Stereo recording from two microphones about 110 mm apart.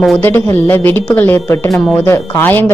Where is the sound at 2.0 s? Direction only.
20° left (ahead or behind).